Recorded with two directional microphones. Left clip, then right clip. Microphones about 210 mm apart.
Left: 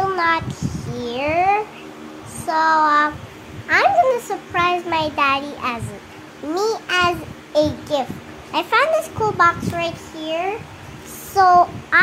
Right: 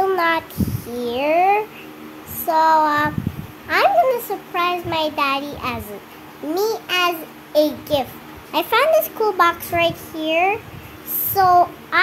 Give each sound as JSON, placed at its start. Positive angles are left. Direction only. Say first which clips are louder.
{"t": 0.1, "sound": "child singing", "louder": "even", "side_deg": -15}
{"t": 3.6, "sound": "a child's voice", "louder": "left 1 dB", "side_deg": -5}
{"t": 6.5, "sound": "child singing", "louder": "left 1 dB", "side_deg": 0}
{"t": 11.3, "sound": "a child's voice", "louder": "left 1 dB", "side_deg": -10}